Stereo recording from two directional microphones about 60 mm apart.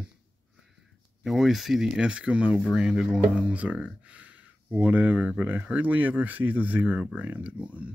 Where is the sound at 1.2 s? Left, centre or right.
Centre.